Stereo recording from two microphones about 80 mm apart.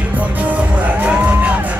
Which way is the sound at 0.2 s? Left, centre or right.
Centre.